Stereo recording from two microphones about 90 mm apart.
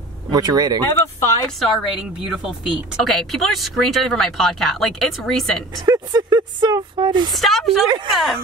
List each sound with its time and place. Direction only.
0.3 s speech: 50° right (ahead or behind)
1.6 s a woman's voice: centre (ahead or behind)
5.9 s speech: 50° right (ahead or behind)
7.3 s a woman's voice: centre (ahead or behind)